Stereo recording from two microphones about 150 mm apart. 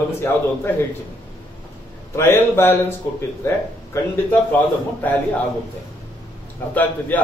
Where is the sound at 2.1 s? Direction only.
15° left (ahead or behind).